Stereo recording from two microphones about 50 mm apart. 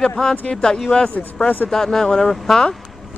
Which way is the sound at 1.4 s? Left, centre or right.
Left.